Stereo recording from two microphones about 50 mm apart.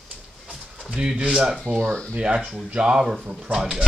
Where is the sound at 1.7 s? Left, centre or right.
Centre.